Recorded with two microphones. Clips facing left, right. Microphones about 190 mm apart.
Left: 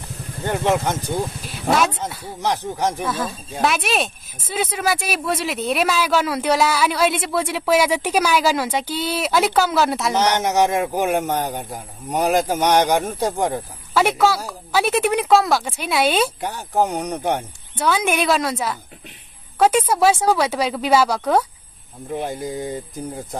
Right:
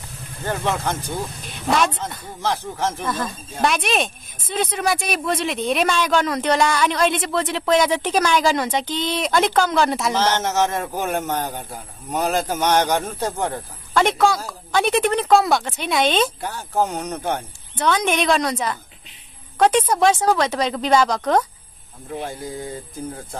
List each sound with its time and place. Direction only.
0.5 s a man's voice: 15° left (ahead or behind)
1.5 s a man's voice: 5° left (ahead or behind)
3.1 s a man's voice: 5° left (ahead or behind)
10.1 s a man's voice: 15° left (ahead or behind)